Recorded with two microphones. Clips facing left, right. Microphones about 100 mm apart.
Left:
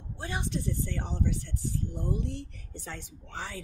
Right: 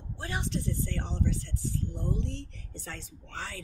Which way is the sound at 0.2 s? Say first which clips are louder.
Even; 20° left (ahead or behind).